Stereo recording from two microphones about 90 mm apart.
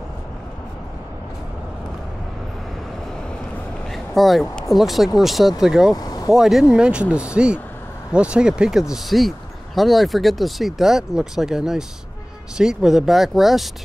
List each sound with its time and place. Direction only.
3.9 s speech: centre (ahead or behind)
5.9 s vehicle: 45° left (ahead or behind)
6.3 s speech: 5° right (ahead or behind)